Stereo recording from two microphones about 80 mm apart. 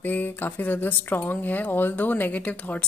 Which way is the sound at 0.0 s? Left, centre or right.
Left.